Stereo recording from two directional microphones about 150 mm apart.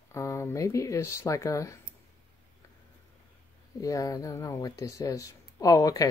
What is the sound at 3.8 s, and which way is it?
Speech, 20° left (ahead or behind).